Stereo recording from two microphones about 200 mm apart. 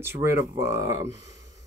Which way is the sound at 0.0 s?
10° right (ahead or behind).